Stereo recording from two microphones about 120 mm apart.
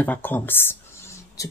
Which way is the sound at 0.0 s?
15° left (ahead or behind).